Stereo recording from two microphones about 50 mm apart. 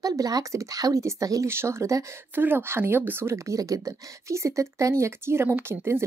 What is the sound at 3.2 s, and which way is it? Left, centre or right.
Speech, right.